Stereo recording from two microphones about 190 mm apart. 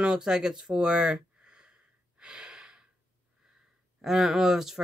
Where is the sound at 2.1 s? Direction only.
5° right (ahead or behind).